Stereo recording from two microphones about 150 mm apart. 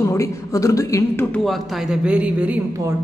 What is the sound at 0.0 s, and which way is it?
Speech, 20° left (ahead or behind).